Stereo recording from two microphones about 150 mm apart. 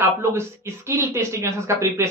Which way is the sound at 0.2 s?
15° right (ahead or behind).